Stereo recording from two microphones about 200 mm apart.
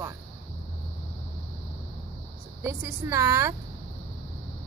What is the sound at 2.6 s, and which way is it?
Speech, 15° right (ahead or behind).